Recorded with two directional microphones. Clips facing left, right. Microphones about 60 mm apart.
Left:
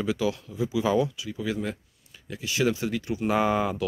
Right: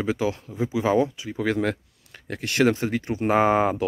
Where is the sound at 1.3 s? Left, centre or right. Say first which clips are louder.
Right 6 dB; right.